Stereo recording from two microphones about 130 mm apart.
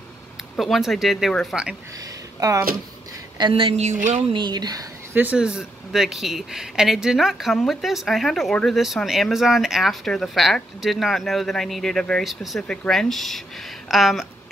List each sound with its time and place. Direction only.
0.6 s speech: centre (ahead or behind)
3.3 s speech: 40° right (ahead or behind)
3.8 s speech: 65° right (ahead or behind)
4.3 s speech: 35° right (ahead or behind)
5.1 s speech: 10° right (ahead or behind)